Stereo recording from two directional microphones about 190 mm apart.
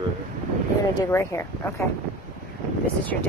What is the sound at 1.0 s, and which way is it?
Speech, 15° left (ahead or behind).